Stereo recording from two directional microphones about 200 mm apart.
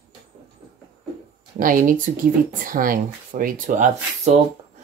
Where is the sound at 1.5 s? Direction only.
40° right (ahead or behind).